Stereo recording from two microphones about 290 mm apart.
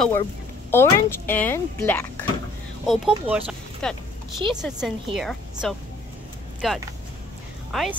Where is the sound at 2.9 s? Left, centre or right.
Centre.